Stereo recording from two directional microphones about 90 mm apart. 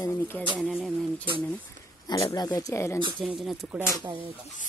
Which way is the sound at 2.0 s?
45° left (ahead or behind).